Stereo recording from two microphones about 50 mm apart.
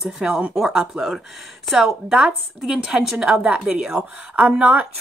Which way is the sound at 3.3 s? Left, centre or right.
Centre.